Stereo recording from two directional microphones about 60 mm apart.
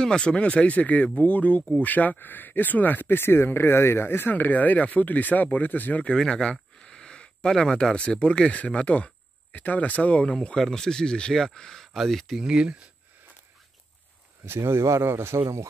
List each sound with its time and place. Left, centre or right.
0.0 s speech: centre
6.1 s speech: centre
10.4 s speech: centre
12.4 s speech: centre
14.4 s speech: right
15.4 s speech: right